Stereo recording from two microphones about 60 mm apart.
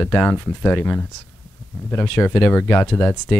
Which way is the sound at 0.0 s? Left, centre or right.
Left.